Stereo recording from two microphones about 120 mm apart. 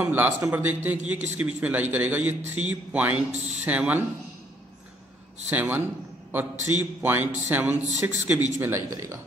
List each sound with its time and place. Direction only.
0.0 s a man's voice: 20° right (ahead or behind)
5.5 s a man's voice: 15° right (ahead or behind)